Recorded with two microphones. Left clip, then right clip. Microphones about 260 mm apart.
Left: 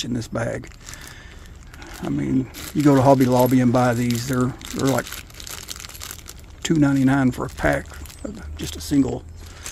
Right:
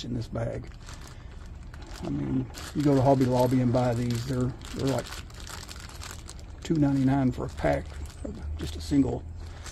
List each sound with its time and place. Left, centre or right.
0.0 s speech: left
2.0 s speech: left
6.6 s speech: left